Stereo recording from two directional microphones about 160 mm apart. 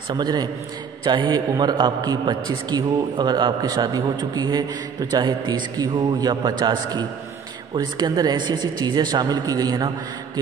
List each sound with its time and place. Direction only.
0.1 s a man's voice: 25° right (ahead or behind)